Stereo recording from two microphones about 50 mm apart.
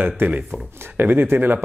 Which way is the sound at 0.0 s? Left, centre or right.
Right.